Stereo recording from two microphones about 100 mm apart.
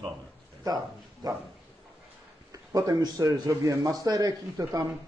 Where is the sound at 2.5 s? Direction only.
35° right (ahead or behind).